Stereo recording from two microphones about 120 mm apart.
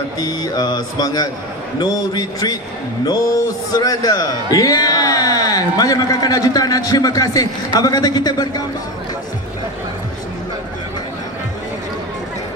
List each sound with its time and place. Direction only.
0.2 s speech: 35° left (ahead or behind)